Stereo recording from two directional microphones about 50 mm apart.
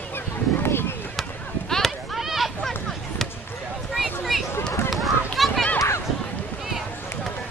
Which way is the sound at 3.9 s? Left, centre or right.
Centre.